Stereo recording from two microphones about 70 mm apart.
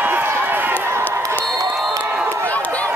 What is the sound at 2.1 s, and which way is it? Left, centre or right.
Crowd, right.